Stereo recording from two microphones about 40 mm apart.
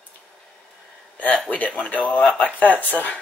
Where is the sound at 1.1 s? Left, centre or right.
Left.